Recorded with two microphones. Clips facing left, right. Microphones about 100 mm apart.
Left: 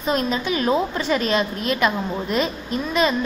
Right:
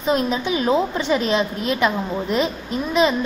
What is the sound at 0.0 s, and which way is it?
A woman's voice, 15° right (ahead or behind).